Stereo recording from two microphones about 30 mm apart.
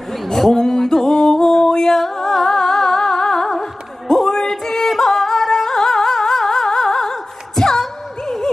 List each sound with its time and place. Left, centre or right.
0.2 s music: centre